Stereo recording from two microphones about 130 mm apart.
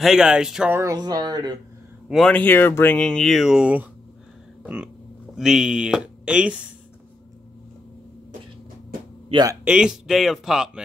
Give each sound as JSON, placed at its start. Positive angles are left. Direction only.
{"t": 0.0, "sound": "speech", "side_deg": -5}
{"t": 0.7, "sound": "speech", "side_deg": -25}
{"t": 2.0, "sound": "speech", "side_deg": 5}
{"t": 5.3, "sound": "speech", "side_deg": -5}
{"t": 9.3, "sound": "speech", "side_deg": -30}
{"t": 9.7, "sound": "speech", "side_deg": -5}